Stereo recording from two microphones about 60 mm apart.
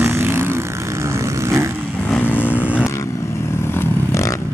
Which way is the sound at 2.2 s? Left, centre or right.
Left.